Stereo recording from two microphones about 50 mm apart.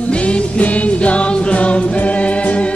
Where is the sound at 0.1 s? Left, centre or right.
Left.